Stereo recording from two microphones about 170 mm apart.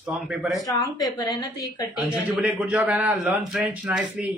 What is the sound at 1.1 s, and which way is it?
Speech, 20° left (ahead or behind).